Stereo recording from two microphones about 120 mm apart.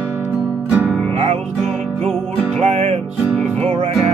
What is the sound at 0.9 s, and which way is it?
Music, 10° left (ahead or behind).